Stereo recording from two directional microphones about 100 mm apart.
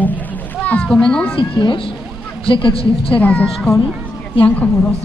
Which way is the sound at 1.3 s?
60° left (ahead or behind).